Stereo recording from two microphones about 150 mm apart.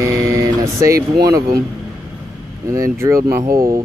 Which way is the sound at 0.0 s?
20° right (ahead or behind).